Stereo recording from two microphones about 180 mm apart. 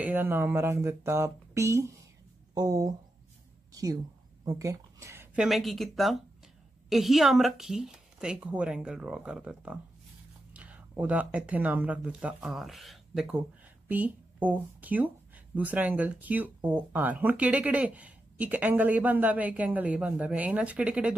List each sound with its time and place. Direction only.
0.0 s a woman's voice: 10° right (ahead or behind)